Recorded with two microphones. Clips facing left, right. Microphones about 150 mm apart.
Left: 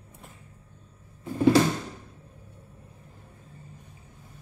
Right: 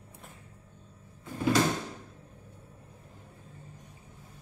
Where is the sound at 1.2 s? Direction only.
30° left (ahead or behind).